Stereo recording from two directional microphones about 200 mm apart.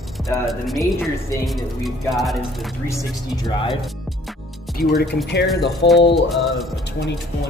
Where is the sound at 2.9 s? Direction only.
15° left (ahead or behind).